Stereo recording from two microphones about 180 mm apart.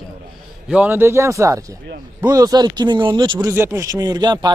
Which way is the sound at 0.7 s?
10° right (ahead or behind).